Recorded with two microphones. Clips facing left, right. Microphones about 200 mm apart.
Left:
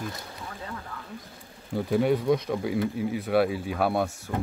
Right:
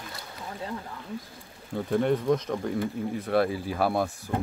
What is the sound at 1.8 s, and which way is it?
Speech, 5° left (ahead or behind).